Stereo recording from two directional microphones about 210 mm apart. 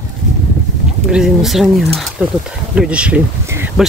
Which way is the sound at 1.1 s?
Centre (ahead or behind).